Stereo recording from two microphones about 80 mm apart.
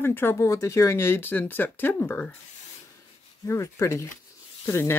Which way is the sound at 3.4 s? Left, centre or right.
Left.